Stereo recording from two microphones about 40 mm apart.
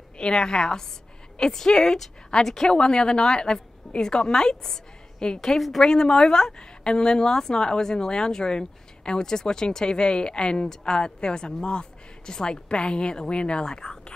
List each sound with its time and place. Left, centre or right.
0.2 s a woman's voice: left
5.4 s a woman's voice: centre
5.8 s a woman's voice: centre